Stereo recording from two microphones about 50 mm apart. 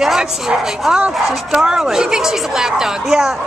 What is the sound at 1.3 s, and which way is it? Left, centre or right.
Speech, centre.